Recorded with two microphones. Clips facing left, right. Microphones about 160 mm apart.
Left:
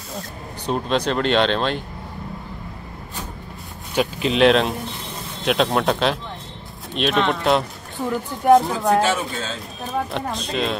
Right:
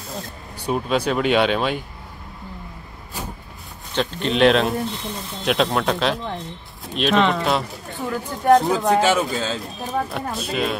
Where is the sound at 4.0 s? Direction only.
5° left (ahead or behind).